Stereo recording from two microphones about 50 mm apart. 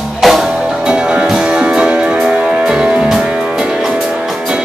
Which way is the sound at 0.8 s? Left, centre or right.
Centre.